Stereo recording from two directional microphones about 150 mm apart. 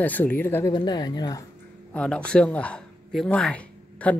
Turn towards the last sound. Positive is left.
turn(degrees=10)  # may be behind; listen again after turning